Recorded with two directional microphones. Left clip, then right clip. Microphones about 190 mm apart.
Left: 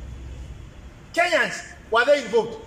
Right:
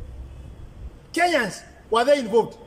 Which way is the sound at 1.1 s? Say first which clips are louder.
Left 1 dB; 30° right (ahead or behind).